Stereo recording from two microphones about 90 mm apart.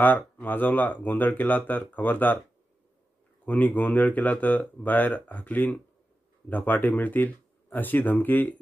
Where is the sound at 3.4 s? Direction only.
15° left (ahead or behind).